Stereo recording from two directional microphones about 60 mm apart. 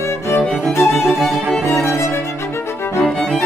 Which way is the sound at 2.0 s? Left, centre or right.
Left.